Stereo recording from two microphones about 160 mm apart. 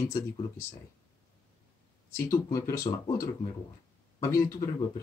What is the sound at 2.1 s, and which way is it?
Speech, 20° left (ahead or behind).